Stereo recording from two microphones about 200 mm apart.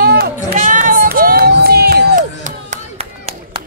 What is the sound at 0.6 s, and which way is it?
Crowd, 40° right (ahead or behind).